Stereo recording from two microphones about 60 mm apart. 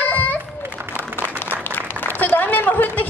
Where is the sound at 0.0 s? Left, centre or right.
Left.